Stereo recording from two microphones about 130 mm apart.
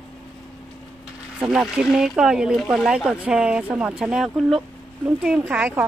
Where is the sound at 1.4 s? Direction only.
5° right (ahead or behind).